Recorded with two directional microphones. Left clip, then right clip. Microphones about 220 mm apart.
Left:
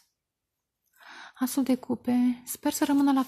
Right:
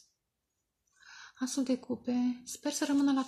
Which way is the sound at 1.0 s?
40° left (ahead or behind).